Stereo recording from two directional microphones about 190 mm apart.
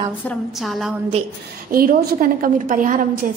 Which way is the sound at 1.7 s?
50° right (ahead or behind).